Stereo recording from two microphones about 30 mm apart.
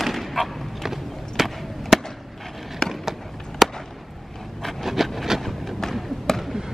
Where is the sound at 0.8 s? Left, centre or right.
Centre.